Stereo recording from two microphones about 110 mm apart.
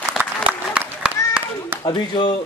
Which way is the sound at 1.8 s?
45° left (ahead or behind).